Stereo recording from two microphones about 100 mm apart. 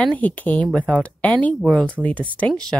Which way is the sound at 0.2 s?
15° left (ahead or behind).